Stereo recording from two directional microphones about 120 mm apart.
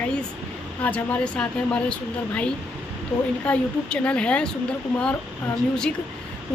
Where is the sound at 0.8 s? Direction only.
10° left (ahead or behind).